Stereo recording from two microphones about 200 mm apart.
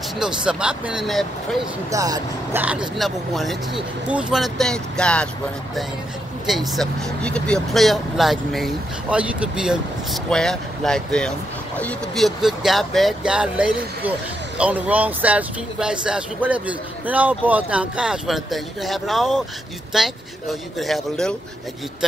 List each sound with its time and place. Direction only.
0.5 s speech: 5° right (ahead or behind)
1.9 s speech: 15° right (ahead or behind)
2.6 s speech: 5° right (ahead or behind)
6.4 s speech: centre (ahead or behind)